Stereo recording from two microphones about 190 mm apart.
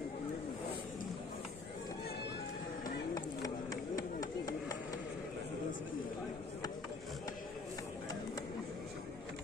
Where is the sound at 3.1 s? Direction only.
20° left (ahead or behind).